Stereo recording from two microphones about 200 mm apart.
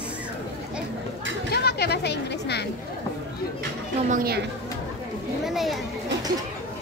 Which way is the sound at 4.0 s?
40° right (ahead or behind).